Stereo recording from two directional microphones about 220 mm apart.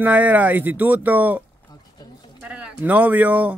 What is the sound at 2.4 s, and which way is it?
Speech, 5° right (ahead or behind).